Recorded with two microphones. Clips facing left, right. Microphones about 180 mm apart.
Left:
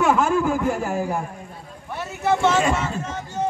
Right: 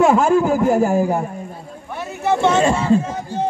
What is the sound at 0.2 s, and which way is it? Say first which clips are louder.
Speech: right 5 dB; 40° right (ahead or behind).